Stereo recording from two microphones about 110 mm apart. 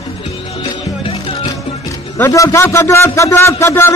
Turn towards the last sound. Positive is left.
turn(degrees=25)  # may be behind; listen again after turning